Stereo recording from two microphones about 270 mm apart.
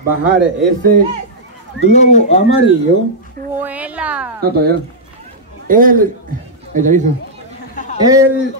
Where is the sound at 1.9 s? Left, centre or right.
Left.